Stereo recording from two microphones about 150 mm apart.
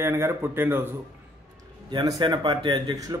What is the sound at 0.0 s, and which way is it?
Speech, 15° right (ahead or behind).